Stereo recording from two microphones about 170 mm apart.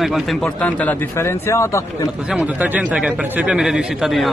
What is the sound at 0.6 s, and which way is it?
Speech, 10° left (ahead or behind).